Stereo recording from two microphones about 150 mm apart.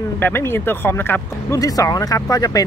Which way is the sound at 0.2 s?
15° left (ahead or behind).